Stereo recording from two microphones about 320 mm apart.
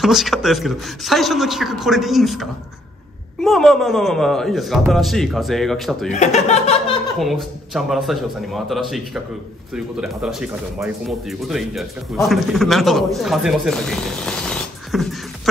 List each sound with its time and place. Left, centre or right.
0.0 s speech: centre
6.1 s speech: left
7.2 s speech: centre